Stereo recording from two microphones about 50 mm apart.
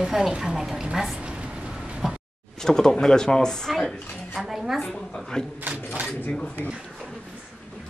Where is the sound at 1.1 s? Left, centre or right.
Centre.